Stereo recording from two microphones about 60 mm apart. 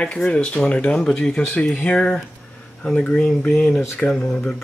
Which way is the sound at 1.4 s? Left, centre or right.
Left.